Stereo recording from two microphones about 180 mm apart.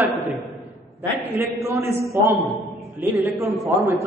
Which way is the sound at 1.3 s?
15° right (ahead or behind).